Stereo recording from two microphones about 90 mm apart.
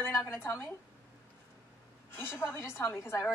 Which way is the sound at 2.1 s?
25° left (ahead or behind).